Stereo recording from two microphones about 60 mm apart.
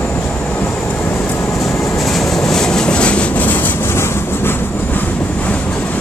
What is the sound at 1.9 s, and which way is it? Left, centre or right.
Train, centre.